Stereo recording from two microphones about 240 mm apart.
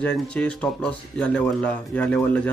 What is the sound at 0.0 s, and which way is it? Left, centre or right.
Speech, centre.